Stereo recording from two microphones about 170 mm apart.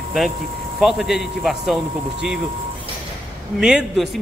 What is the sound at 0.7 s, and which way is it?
A man's voice, centre (ahead or behind).